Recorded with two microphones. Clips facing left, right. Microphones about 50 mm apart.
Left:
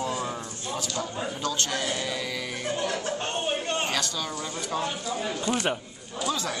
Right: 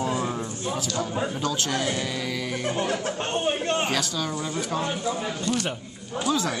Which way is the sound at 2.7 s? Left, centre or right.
Right.